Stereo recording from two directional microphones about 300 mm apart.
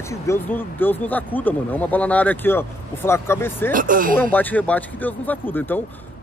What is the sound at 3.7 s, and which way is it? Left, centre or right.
Speech, right.